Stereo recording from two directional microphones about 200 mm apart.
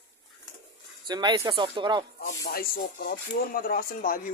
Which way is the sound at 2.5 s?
50° left (ahead or behind).